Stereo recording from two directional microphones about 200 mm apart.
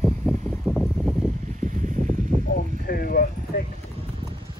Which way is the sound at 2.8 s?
50° left (ahead or behind).